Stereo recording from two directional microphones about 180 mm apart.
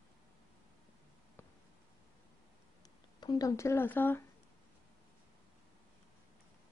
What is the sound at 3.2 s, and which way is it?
Speech, 20° left (ahead or behind).